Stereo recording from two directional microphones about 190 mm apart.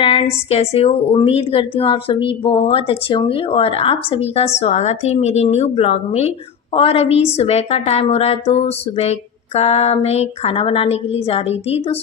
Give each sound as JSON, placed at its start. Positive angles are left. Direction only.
{"t": 0.0, "sound": "a woman's voice", "side_deg": 30}